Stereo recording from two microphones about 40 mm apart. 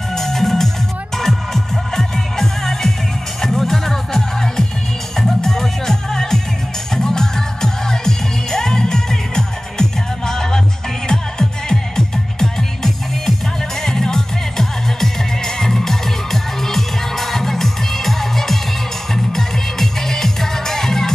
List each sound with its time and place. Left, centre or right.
0.1 s music: centre